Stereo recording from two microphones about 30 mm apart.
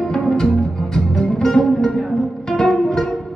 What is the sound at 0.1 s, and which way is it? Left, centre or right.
Music, left.